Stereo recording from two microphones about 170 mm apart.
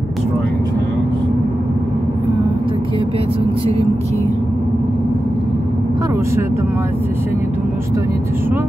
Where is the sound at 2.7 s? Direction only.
30° right (ahead or behind).